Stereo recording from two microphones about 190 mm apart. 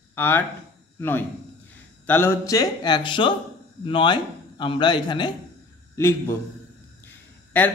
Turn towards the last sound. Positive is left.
turn(degrees=10)  # may be behind; listen again after turning